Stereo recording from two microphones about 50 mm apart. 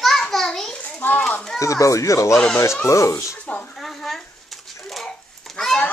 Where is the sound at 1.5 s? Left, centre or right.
Left.